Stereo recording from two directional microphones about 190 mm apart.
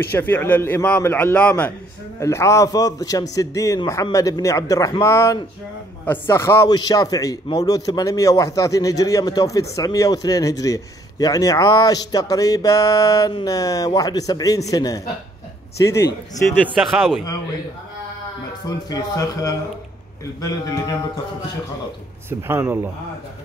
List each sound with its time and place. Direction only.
0.0 s a man's voice: 10° left (ahead or behind)
16.4 s a man's voice: 10° left (ahead or behind)
18.9 s a man's voice: 20° left (ahead or behind)
22.3 s speech: 10° right (ahead or behind)